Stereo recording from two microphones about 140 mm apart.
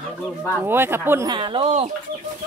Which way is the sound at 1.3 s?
35° right (ahead or behind).